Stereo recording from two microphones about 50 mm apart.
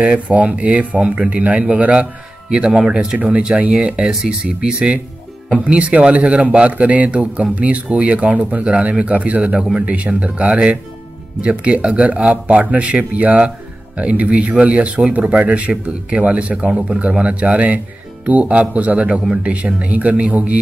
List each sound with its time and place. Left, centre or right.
0.3 s speech: right